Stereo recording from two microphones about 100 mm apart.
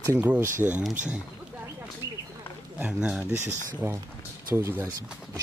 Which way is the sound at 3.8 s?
45° right (ahead or behind).